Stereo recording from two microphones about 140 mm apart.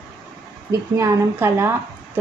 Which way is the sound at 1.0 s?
15° right (ahead or behind).